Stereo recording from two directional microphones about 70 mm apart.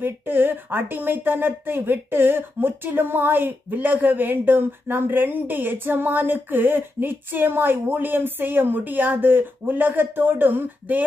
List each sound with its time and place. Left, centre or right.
0.0 s speech: right